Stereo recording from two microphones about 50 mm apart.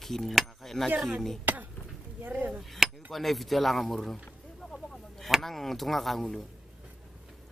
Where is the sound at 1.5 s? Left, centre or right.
Right.